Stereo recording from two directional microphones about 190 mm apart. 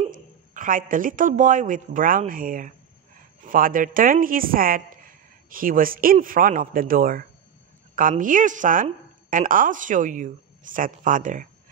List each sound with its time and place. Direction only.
0.1 s a woman's voice: 45° right (ahead or behind)